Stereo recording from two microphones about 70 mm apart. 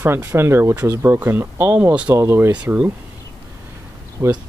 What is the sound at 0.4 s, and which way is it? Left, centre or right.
Speech, right.